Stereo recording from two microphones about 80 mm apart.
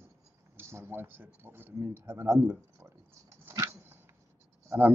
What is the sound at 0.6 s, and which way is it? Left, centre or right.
Speech, right.